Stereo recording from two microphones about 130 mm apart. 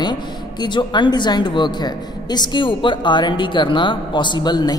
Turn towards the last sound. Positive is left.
turn(degrees=35)  # may be behind; listen again after turning